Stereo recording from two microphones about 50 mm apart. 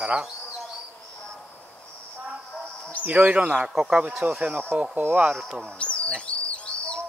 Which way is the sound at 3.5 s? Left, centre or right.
Centre.